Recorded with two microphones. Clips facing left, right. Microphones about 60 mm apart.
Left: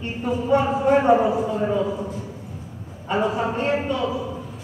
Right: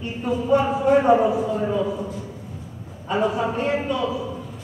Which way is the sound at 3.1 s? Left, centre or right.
Left.